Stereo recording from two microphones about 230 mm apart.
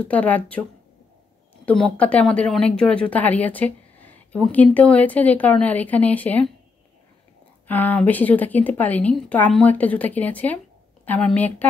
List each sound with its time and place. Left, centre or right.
0.0 s speech: centre
1.7 s speech: centre
7.6 s speech: centre